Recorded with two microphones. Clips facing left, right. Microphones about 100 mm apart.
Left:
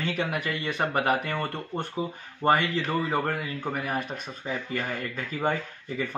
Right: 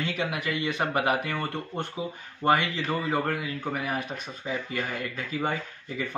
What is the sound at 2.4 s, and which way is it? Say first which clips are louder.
Speech: even; 30° left (ahead or behind).